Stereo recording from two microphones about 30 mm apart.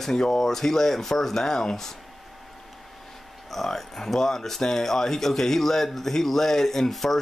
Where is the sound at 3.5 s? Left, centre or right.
Centre.